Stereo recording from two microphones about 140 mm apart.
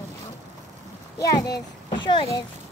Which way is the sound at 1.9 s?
35° left (ahead or behind).